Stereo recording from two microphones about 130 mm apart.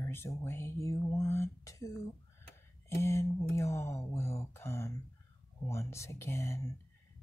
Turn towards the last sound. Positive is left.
turn(degrees=20)  # may be behind; listen again after turning